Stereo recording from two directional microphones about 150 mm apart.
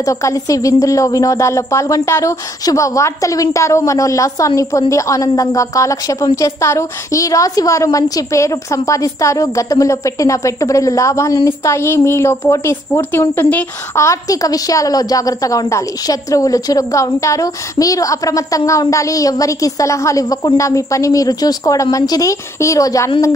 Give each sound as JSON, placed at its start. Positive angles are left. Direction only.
{"t": 0.0, "sound": "a woman's voice", "side_deg": 20}